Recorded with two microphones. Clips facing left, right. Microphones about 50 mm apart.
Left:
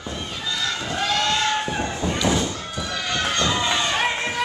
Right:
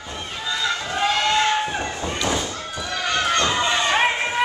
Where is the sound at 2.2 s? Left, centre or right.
Centre.